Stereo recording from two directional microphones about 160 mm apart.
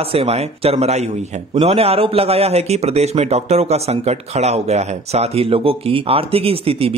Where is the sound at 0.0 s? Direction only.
40° right (ahead or behind).